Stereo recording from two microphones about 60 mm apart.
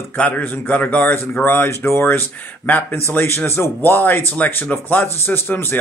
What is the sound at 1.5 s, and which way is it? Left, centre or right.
Speech, left.